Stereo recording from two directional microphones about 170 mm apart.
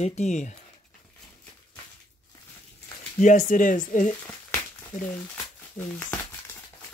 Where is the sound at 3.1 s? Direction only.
50° left (ahead or behind).